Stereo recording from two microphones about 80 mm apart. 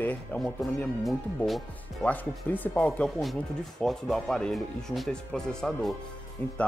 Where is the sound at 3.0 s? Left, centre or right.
Centre.